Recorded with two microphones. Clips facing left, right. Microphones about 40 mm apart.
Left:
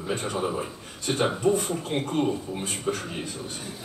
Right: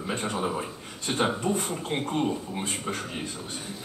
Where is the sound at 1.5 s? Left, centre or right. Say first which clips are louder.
Left 4 dB; centre.